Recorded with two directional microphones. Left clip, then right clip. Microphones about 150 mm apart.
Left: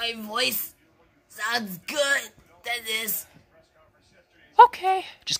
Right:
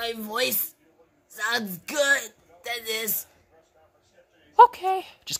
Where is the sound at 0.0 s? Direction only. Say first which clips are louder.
Left 1 dB; 90° right.